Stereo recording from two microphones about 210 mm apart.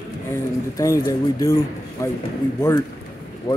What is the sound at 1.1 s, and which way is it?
Speech, 15° left (ahead or behind).